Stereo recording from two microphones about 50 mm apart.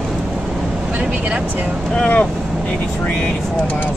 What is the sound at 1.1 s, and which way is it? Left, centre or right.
Vehicle, right.